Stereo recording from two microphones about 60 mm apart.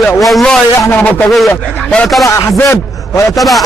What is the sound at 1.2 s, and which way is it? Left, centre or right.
Speech, centre.